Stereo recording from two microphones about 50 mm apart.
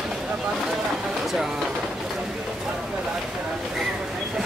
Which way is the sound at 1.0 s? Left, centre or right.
Centre.